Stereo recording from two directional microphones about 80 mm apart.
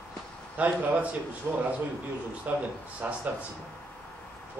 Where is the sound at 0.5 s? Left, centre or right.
Centre.